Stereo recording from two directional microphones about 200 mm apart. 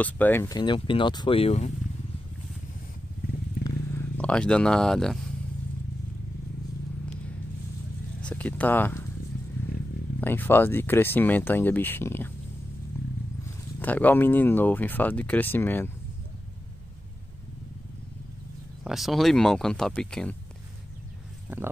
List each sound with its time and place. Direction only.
0.0 s speech: 10° left (ahead or behind); by 1.7 s 30° left (ahead or behind)
3.6 s purr: 10° left (ahead or behind)
8.2 s speech: 5° left (ahead or behind)
10.2 s speech: 10° left (ahead or behind)
13.7 s speech: 10° left (ahead or behind)
18.9 s speech: centre (ahead or behind)